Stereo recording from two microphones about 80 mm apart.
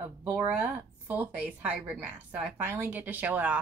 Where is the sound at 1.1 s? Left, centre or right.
Centre.